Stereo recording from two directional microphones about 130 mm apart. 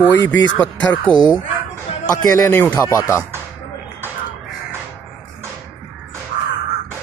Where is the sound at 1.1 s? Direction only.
30° left (ahead or behind).